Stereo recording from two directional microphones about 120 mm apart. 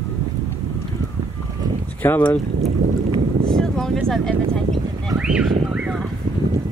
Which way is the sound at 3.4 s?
5° left (ahead or behind).